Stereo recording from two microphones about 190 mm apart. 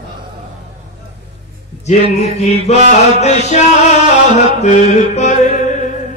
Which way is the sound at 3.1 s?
35° left (ahead or behind).